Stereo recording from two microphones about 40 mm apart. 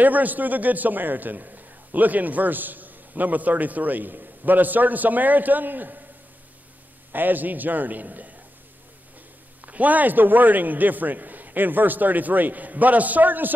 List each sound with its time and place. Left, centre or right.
0.0 s a man's voice: right
7.1 s a man's voice: right
9.7 s a man's voice: right